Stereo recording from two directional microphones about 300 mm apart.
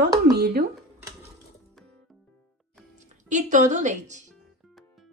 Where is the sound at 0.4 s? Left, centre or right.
Right.